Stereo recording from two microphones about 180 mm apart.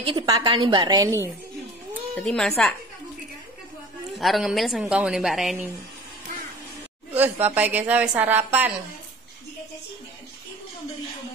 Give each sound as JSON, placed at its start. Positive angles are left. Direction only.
{"t": 0.0, "sound": "a woman's voice", "side_deg": -25}
{"t": 2.1, "sound": "a woman's voice", "side_deg": 5}
{"t": 4.1, "sound": "a woman's voice", "side_deg": 0}
{"t": 7.2, "sound": "a woman's voice", "side_deg": -10}